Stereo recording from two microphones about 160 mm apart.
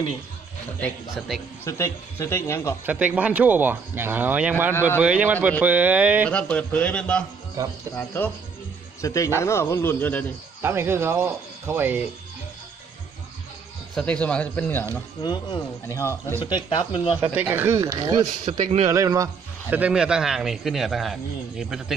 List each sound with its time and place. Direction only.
1.1 s a man's voice: centre (ahead or behind)
1.6 s a man's voice: 15° left (ahead or behind)
2.9 s speech: 10° right (ahead or behind)
6.2 s a man's voice: 5° left (ahead or behind)
7.6 s speech: 20° right (ahead or behind)
7.9 s a man's voice: 10° left (ahead or behind)
10.6 s speech: 15° right (ahead or behind)
13.9 s a man's voice: 5° left (ahead or behind)
15.2 s speech: 30° left (ahead or behind)
16.0 s a man's voice: 15° left (ahead or behind)
16.3 s speech: 30° left (ahead or behind)
17.2 s speech: 15° right (ahead or behind)
18.4 s a man's voice: 40° right (ahead or behind)
18.9 s a man's voice: 20° right (ahead or behind); by 21.9 s centre (ahead or behind)